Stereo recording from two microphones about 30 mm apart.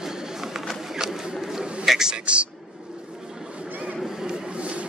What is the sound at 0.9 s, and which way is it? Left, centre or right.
Vehicle, centre.